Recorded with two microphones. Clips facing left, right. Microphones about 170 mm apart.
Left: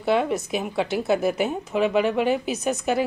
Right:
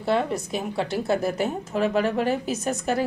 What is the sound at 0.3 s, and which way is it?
Speech, centre (ahead or behind).